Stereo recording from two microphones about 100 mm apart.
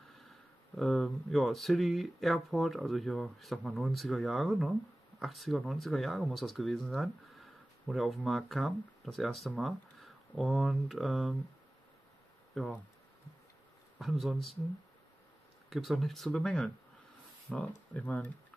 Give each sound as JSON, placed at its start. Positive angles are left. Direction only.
{"t": 0.2, "sound": "speech", "side_deg": 0}
{"t": 12.6, "sound": "speech", "side_deg": 5}
{"t": 13.9, "sound": "speech", "side_deg": 0}
{"t": 15.7, "sound": "speech", "side_deg": 0}